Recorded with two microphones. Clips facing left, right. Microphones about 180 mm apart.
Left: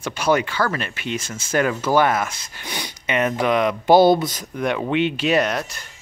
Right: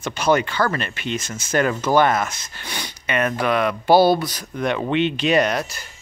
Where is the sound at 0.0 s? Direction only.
10° left (ahead or behind).